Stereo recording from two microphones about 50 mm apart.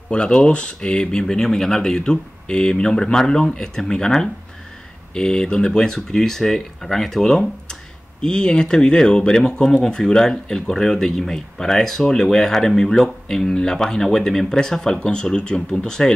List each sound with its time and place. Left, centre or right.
0.1 s speech: centre